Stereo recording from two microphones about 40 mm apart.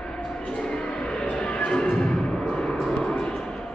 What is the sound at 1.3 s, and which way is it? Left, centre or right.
Music, left.